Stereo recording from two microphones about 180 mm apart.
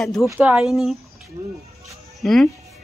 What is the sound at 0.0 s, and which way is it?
Speech, centre (ahead or behind).